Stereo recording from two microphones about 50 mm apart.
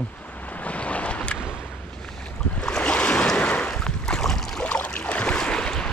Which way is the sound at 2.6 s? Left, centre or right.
Left.